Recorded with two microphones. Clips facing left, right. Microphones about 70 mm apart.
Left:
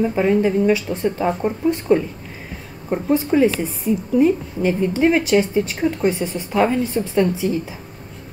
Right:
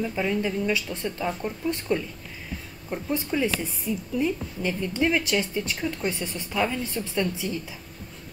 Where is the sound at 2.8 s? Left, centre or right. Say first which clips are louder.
Left 10 dB; left.